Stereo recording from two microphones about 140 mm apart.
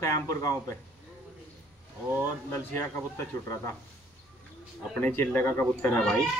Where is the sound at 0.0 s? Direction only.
20° left (ahead or behind).